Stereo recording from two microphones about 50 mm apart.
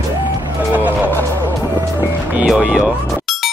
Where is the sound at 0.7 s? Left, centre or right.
Right.